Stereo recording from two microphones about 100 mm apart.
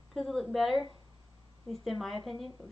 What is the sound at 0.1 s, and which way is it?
Speech, centre (ahead or behind).